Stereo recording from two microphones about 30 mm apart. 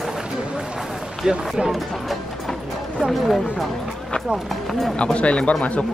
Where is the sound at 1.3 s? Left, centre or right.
Right.